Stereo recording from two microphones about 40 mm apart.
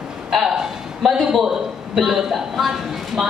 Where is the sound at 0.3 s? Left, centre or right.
Centre.